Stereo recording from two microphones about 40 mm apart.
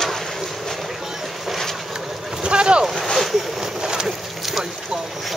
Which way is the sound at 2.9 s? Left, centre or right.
Centre.